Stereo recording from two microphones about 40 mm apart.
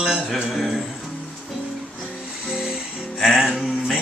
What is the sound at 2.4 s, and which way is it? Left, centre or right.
Music, centre.